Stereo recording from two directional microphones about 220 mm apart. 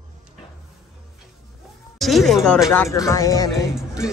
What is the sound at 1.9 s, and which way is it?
Speech, centre (ahead or behind).